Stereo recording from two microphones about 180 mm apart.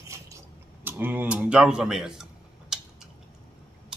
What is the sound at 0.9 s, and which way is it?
Speech, 10° right (ahead or behind).